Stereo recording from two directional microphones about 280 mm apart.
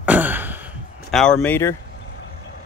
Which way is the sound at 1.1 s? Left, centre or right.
Centre.